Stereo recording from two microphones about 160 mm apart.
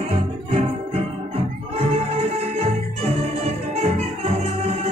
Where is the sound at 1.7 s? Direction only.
40° right (ahead or behind).